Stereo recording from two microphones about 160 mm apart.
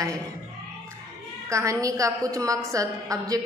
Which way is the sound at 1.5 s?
20° right (ahead or behind).